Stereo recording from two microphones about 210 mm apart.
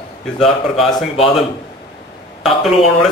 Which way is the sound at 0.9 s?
30° left (ahead or behind).